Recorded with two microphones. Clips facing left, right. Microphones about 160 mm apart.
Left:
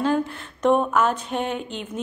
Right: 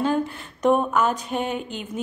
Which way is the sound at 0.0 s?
Centre (ahead or behind).